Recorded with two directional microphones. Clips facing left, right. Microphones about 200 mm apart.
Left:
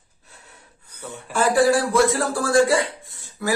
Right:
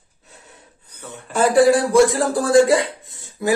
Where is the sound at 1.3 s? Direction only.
20° right (ahead or behind).